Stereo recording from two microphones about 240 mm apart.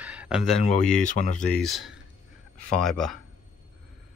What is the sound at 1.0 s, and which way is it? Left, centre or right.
Speech, left.